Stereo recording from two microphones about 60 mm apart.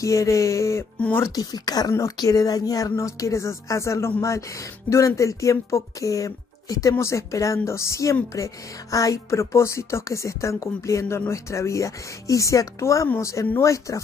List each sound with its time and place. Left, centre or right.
0.0 s speech: left
1.3 s a woman's voice: left
7.0 s speech: left